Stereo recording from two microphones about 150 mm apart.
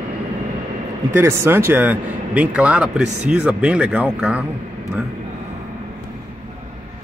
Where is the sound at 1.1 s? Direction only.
20° right (ahead or behind).